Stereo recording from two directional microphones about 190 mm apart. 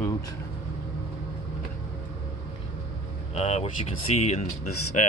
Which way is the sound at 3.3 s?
35° left (ahead or behind).